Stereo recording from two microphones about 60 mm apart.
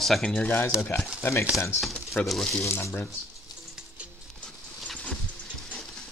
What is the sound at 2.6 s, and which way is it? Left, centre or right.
Speech, left.